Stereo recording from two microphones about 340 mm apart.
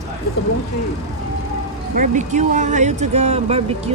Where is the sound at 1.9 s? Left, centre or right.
Right.